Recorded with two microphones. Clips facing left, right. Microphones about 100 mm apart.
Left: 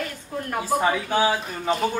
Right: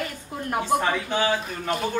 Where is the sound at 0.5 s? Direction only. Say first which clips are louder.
Left 1 dB; 5° left (ahead or behind).